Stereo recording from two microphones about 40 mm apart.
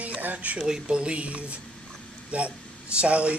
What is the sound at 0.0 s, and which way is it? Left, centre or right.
Speech, right.